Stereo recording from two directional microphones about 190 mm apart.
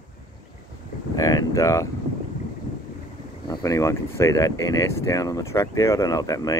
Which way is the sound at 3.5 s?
20° left (ahead or behind).